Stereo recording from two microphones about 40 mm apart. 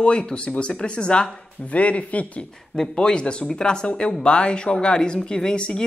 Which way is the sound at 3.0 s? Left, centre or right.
Left.